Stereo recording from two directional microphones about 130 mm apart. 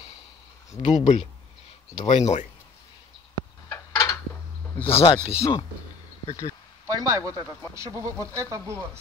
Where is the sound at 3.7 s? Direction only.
25° left (ahead or behind).